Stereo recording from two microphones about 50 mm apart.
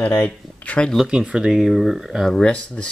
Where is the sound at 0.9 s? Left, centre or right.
Centre.